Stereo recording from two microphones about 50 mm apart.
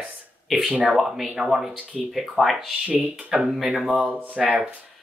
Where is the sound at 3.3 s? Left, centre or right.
Centre.